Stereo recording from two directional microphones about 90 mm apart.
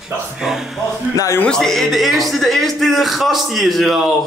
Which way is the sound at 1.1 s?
35° left (ahead or behind).